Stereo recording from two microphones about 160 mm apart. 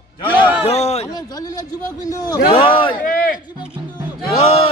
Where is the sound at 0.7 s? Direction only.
40° left (ahead or behind).